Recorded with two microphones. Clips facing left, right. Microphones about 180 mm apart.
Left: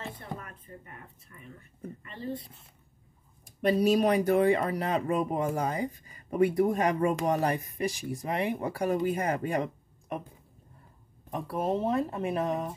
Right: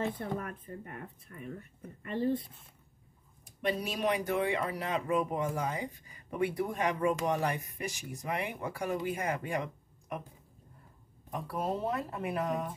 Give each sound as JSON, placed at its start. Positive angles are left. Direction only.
{"t": 0.0, "sound": "speech", "side_deg": -55}
{"t": 3.6, "sound": "speech", "side_deg": 40}
{"t": 11.2, "sound": "speech", "side_deg": 25}